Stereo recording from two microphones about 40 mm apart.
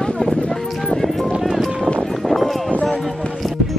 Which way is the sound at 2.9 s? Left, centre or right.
Centre.